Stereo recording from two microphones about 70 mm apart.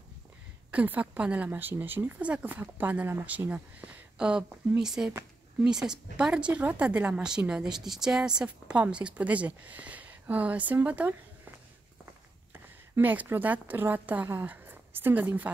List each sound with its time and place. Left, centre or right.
0.7 s speech: right
4.3 s speech: centre
12.5 s a woman's voice: right